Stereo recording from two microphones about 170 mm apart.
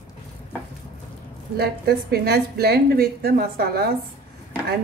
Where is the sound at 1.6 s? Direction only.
70° right (ahead or behind).